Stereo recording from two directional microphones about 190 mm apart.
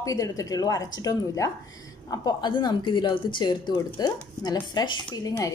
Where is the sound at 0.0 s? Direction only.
20° left (ahead or behind).